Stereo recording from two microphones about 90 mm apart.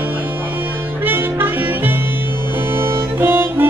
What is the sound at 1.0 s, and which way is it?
Music, 20° right (ahead or behind).